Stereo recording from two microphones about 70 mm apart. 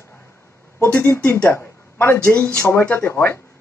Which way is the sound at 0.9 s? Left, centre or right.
Left.